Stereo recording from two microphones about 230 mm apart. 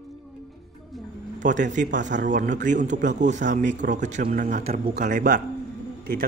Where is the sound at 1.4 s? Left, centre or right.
Right.